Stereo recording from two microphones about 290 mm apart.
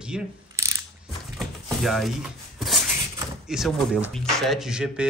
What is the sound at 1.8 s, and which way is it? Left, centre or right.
Speech, centre.